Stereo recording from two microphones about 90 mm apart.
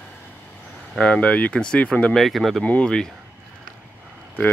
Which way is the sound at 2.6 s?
15° left (ahead or behind).